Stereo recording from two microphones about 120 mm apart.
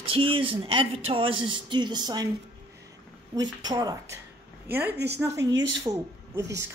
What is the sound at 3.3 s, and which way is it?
Speech, 30° right (ahead or behind).